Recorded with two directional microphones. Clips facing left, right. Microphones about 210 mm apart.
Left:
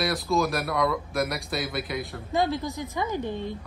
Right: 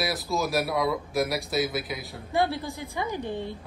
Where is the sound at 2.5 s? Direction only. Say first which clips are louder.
Left 3 dB; 15° left (ahead or behind).